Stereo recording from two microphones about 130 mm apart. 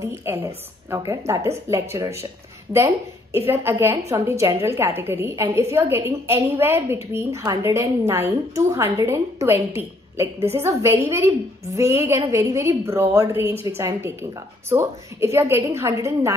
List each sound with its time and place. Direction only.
0.0 s a woman's voice: 20° right (ahead or behind)
3.3 s a woman's voice: 15° right (ahead or behind)